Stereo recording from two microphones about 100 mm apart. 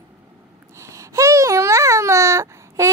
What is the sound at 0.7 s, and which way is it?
Baby cry, 30° right (ahead or behind).